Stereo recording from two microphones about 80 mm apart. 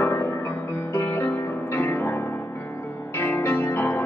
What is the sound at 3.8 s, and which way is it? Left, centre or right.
Music, left.